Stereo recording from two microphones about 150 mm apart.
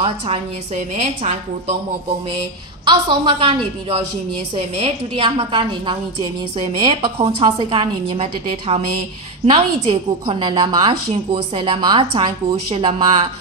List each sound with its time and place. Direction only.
0.9 s a woman's voice: 45° right (ahead or behind)
2.8 s a woman's voice: 35° right (ahead or behind)